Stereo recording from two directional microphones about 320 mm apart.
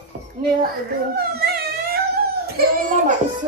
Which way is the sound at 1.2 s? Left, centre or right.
Right.